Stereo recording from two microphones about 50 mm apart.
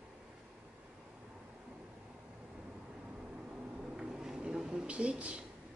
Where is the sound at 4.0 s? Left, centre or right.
Centre.